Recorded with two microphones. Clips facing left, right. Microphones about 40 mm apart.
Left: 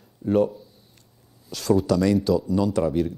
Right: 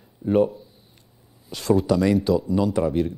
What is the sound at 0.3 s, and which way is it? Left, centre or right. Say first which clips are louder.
Speech: right 1 dB; centre.